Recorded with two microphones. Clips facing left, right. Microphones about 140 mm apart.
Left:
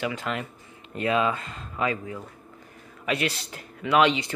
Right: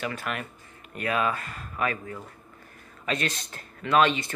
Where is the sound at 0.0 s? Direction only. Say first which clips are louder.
Left 3 dB; 20° left (ahead or behind).